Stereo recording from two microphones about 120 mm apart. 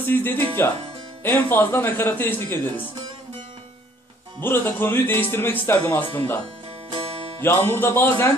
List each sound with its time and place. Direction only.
0.0 s speech: 15° left (ahead or behind)
4.4 s speech: 20° left (ahead or behind)
7.4 s speech: 20° left (ahead or behind)